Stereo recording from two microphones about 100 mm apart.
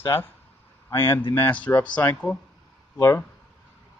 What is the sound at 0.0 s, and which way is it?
A man's voice, 25° left (ahead or behind).